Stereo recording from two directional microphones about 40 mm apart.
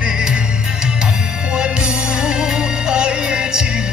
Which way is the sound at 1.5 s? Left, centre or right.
Right.